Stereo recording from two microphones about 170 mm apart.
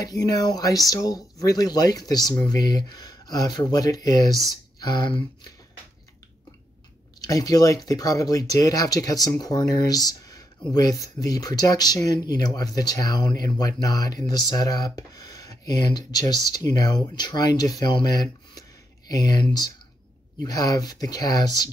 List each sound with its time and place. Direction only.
0.0 s speech: 20° left (ahead or behind)
7.2 s speech: 20° left (ahead or behind)
20.4 s speech: 20° left (ahead or behind)